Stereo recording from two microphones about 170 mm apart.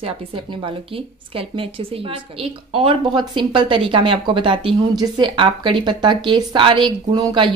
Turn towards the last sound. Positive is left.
turn(degrees=-30)  # may be behind; listen again after turning